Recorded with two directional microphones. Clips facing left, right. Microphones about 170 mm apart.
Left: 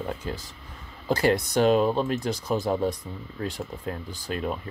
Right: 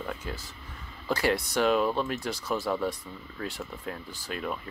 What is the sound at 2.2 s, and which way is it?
Speech, 20° left (ahead or behind).